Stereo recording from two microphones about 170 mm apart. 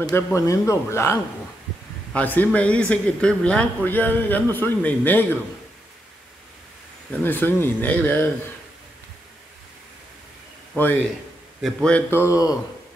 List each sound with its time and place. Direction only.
0.0 s speech: 20° left (ahead or behind)
2.1 s speech: 10° left (ahead or behind)
7.1 s speech: 10° left (ahead or behind)
11.6 s speech: 5° left (ahead or behind)